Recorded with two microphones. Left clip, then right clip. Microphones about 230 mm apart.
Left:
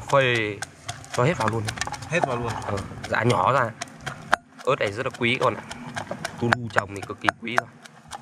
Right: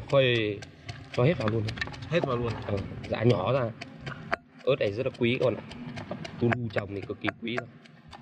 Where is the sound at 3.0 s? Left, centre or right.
Centre.